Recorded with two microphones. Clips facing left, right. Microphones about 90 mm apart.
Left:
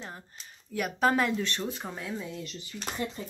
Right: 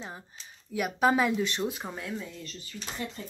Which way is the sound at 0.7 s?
5° right (ahead or behind).